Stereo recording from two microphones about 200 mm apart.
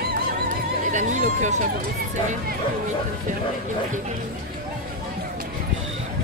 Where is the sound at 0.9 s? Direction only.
35° right (ahead or behind).